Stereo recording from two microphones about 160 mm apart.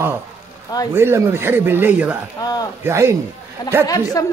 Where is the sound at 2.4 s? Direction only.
25° left (ahead or behind).